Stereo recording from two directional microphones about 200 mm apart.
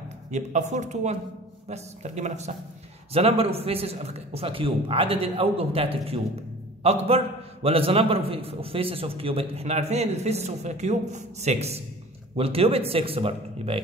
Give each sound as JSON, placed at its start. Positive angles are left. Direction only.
{"t": 0.3, "sound": "a man's voice", "side_deg": -35}